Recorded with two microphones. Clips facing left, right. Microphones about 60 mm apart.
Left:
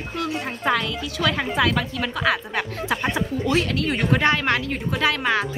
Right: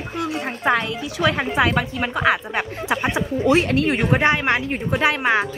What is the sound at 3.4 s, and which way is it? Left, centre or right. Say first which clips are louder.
Speech: right 7 dB; right.